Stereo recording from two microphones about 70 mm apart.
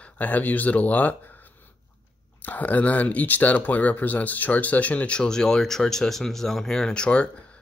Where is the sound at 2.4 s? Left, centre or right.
Left.